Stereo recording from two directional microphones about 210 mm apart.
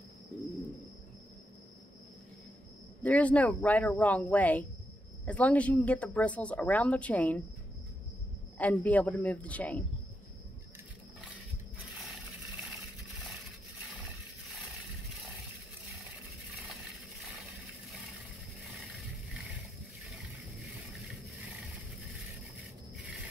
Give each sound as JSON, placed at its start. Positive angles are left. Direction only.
{"t": 3.0, "sound": "speech", "side_deg": 5}
{"t": 8.5, "sound": "speech", "side_deg": 5}